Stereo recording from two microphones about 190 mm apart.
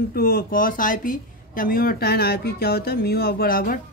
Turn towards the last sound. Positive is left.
turn(degrees=50)  # may be behind; listen again after turning